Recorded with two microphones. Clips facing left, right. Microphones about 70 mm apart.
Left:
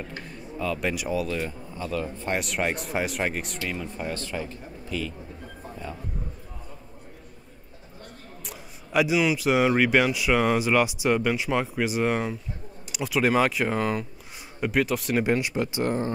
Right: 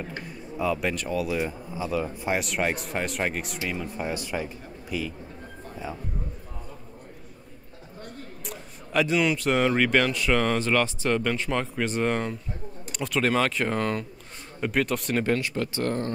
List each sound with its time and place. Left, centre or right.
0.3 s a sound: centre
0.8 s speech: centre
1.2 s speech: centre
2.3 s speech: centre
8.5 s speech: centre
15.2 s speech: centre